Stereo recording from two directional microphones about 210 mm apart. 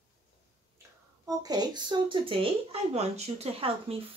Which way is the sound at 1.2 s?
20° right (ahead or behind).